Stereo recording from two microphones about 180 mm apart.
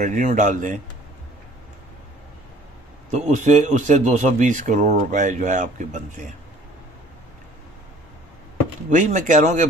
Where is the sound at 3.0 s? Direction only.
40° right (ahead or behind).